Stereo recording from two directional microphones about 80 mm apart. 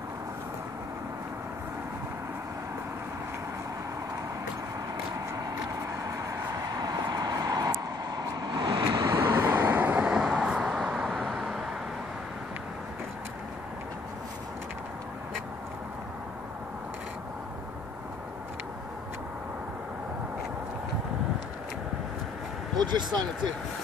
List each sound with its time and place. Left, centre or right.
5.1 s vehicle: right
8.2 s vehicle: right
9.5 s vehicle: right; by 11.6 s centre
22.8 s speech: right